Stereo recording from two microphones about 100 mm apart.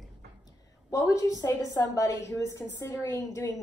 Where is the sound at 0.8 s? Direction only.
35° left (ahead or behind).